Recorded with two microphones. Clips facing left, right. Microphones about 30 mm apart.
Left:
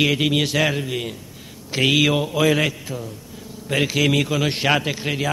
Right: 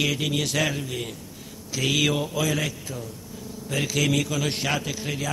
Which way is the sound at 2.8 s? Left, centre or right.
Left.